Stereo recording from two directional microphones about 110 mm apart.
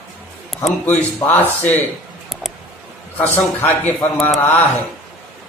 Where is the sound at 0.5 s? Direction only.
Centre (ahead or behind).